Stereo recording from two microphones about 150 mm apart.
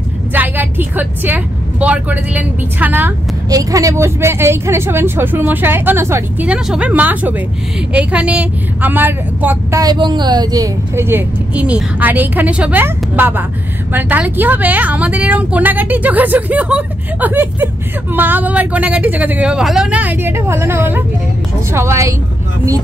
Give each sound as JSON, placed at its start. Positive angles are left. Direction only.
{"t": 0.3, "sound": "speech", "side_deg": -10}
{"t": 3.4, "sound": "speech", "side_deg": -25}
{"t": 9.8, "sound": "a woman's voice", "side_deg": -30}